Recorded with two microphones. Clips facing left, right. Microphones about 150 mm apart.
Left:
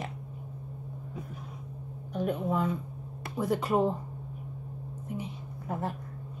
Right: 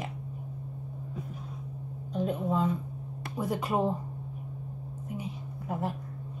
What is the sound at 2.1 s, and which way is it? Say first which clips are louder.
Music: even; 25° right (ahead or behind).